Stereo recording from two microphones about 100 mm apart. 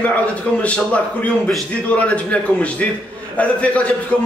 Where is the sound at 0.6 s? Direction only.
15° left (ahead or behind).